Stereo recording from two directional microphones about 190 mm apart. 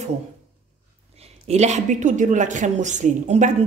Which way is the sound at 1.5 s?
35° right (ahead or behind).